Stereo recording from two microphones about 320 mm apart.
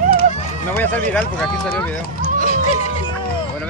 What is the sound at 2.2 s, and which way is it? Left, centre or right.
Music, left.